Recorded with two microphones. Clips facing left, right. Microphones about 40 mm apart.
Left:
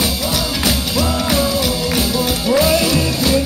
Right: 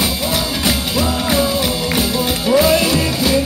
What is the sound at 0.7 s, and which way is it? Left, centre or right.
Music, centre.